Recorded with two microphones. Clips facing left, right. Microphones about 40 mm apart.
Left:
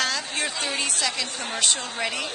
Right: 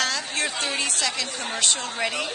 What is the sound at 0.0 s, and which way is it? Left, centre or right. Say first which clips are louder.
A woman's voice: right 1 dB; centre.